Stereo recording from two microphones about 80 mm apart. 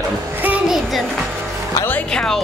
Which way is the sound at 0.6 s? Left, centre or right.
Centre.